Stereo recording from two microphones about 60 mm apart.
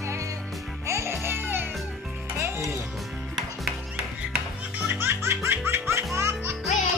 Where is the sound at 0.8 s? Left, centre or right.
Right.